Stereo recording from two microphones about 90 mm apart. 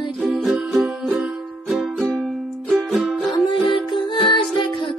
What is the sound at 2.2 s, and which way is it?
Music, 15° right (ahead or behind).